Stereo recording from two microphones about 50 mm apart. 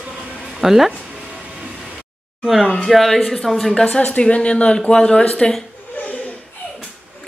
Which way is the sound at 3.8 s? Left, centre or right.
Left.